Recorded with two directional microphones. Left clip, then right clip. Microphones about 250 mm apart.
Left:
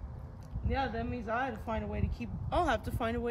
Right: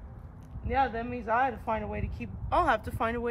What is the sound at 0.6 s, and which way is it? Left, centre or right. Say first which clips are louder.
Speech: right 6 dB; centre.